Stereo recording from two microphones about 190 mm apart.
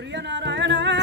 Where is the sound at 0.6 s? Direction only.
70° right (ahead or behind).